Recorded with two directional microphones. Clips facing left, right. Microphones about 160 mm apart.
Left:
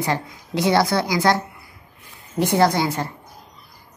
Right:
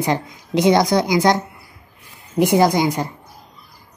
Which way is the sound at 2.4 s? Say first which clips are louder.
Right 3 dB; 15° right (ahead or behind).